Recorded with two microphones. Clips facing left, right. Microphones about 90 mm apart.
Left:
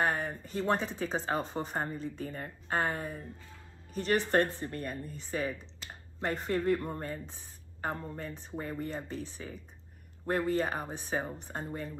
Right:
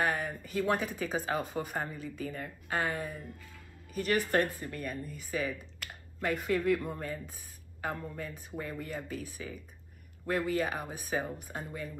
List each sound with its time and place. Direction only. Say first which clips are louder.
0.0 s speech: left 1 dB; 30° left (ahead or behind)
10.2 s speech: left 1 dB; 40° left (ahead or behind)